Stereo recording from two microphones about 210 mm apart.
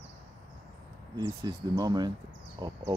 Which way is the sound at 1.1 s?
20° right (ahead or behind).